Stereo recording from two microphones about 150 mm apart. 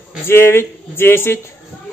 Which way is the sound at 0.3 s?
15° left (ahead or behind).